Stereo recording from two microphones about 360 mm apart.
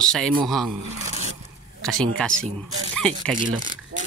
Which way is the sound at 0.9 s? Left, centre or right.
Centre.